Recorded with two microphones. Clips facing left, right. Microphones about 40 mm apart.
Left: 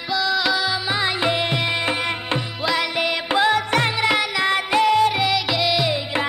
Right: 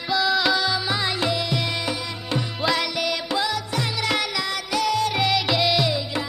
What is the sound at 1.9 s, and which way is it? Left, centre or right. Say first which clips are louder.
Music: left 5 dB; left.